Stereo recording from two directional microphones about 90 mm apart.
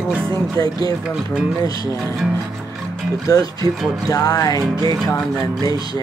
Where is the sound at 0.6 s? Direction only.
40° left (ahead or behind).